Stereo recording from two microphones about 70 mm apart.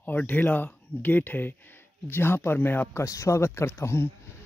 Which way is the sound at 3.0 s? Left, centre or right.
Left.